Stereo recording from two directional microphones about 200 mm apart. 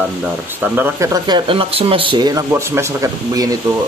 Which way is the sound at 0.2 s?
5° right (ahead or behind).